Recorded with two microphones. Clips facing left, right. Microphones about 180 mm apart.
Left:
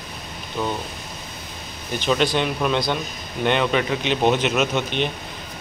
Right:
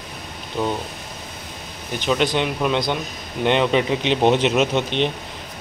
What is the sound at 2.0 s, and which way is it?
Speech, 15° right (ahead or behind).